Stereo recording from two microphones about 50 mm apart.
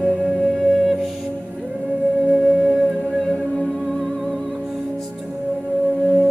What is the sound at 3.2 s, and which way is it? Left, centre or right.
Music, centre.